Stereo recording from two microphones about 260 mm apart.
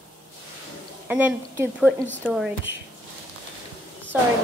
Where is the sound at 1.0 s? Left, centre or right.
Centre.